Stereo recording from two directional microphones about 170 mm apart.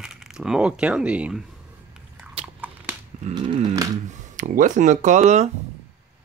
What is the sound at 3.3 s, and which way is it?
Speech, 30° right (ahead or behind).